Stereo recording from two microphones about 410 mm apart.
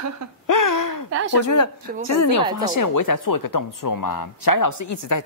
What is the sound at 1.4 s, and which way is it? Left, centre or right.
A woman's voice, left.